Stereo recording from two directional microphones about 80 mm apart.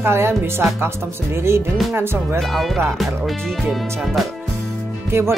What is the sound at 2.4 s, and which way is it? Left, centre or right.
Speech, centre.